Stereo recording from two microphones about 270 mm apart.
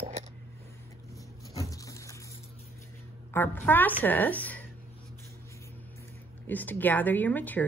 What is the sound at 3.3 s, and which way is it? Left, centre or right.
Speech, centre.